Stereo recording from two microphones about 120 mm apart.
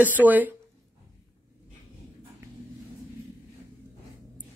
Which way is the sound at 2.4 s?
25° right (ahead or behind).